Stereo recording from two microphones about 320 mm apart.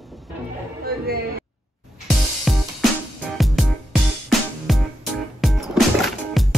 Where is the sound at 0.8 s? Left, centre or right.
Right.